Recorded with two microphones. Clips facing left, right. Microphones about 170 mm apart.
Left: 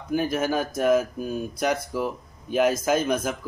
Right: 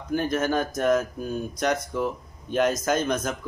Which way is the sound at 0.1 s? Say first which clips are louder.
Even; 5° left (ahead or behind).